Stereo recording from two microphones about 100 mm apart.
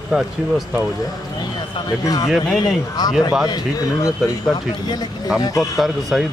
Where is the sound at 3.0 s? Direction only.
40° left (ahead or behind).